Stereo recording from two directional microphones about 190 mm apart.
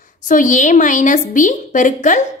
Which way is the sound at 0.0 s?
45° left (ahead or behind).